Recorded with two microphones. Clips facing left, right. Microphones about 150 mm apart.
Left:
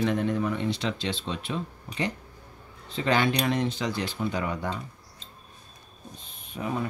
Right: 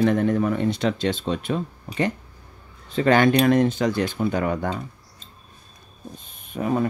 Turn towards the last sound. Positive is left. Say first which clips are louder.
# right 7 dB
turn(degrees=-50)  # may be behind; listen again after turning